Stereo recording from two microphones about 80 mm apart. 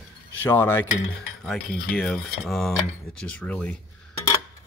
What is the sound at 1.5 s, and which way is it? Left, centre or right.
Cutlery, centre.